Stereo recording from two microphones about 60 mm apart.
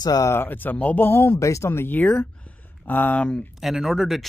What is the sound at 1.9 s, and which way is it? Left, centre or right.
Speech, left.